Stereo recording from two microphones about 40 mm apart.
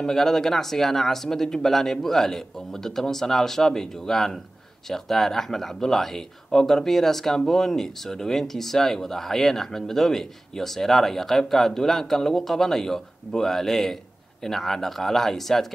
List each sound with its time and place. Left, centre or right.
0.0 s speech: centre